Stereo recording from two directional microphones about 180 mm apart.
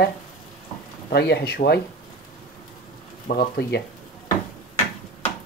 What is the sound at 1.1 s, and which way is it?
Speech, 65° left (ahead or behind).